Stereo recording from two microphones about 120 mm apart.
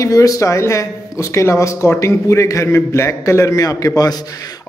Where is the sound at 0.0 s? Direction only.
30° left (ahead or behind).